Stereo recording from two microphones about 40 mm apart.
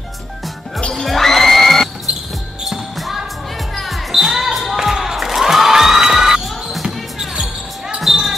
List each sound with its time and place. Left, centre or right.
1.0 s music: centre
3.0 s basketball bounce: centre
4.3 s basketball bounce: centre
4.6 s crowd: centre
6.4 s basketball bounce: centre